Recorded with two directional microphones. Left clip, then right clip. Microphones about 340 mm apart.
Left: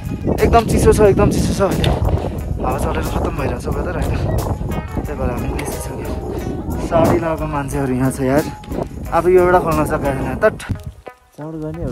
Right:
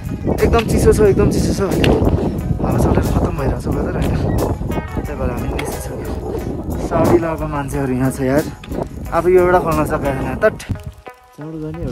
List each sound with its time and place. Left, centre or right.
0.3 s speech: centre